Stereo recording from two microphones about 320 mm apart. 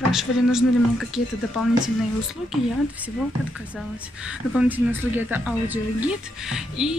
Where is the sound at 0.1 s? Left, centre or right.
Centre.